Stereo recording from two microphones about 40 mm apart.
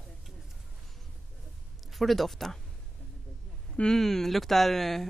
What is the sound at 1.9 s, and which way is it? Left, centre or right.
Speech, centre.